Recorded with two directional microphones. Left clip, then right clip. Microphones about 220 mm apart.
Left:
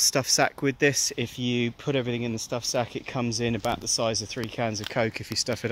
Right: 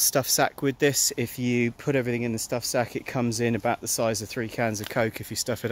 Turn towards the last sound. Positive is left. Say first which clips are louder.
# left 1 dB
turn(degrees=5)  # may be behind; listen again after turning